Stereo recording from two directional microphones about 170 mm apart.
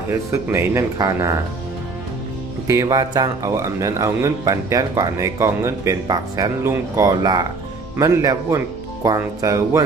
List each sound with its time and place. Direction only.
0.3 s speech: 15° right (ahead or behind)
2.6 s speech: 20° right (ahead or behind)